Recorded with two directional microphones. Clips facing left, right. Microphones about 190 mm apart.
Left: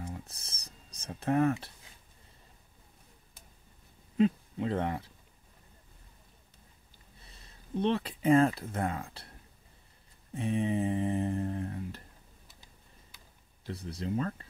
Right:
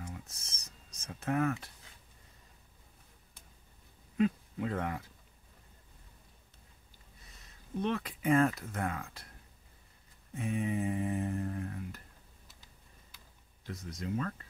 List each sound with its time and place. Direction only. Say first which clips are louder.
0.0 s a sound: left 4 dB; 35° left (ahead or behind)
4.2 s speech: left 3 dB; 30° left (ahead or behind)
7.2 s speech: left 5 dB; 30° left (ahead or behind)
10.3 s speech: left 3 dB; 30° left (ahead or behind)
13.7 s speech: left 3 dB; 30° left (ahead or behind)